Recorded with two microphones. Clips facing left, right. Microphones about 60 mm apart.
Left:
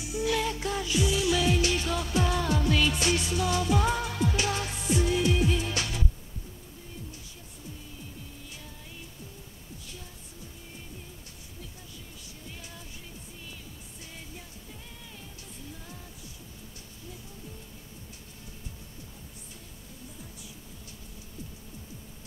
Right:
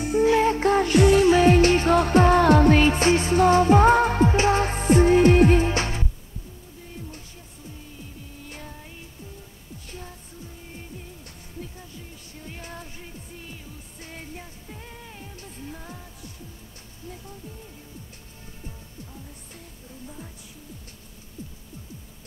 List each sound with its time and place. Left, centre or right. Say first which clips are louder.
0.0 s music: right 10 dB; right
8.4 s music: right 6 dB; right
9.8 s music: right 9 dB; right
11.2 s music: right 7 dB; right
21.4 s music: right 4 dB; right